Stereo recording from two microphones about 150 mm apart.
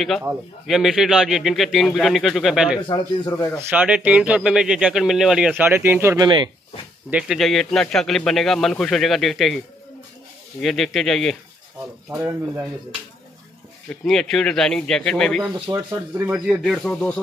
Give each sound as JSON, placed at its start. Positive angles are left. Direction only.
{"t": 0.7, "sound": "speech", "side_deg": 0}
{"t": 2.9, "sound": "speech", "side_deg": 20}
{"t": 3.5, "sound": "speech", "side_deg": -10}
{"t": 5.7, "sound": "speech", "side_deg": -15}
{"t": 6.2, "sound": "speech", "side_deg": -30}
{"t": 7.1, "sound": "speech", "side_deg": -5}
{"t": 10.6, "sound": "speech", "side_deg": 0}
{"t": 12.1, "sound": "speech", "side_deg": -15}
{"t": 13.8, "sound": "speech", "side_deg": 0}
{"t": 15.7, "sound": "speech", "side_deg": -10}